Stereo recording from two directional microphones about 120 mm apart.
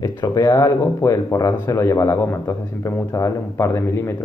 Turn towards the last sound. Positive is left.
turn(degrees=20)  # may be behind; listen again after turning